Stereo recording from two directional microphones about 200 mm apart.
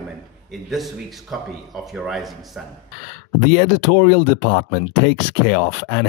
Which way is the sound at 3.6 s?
40° left (ahead or behind).